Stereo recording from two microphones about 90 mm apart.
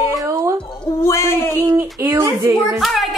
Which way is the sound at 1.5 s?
25° right (ahead or behind).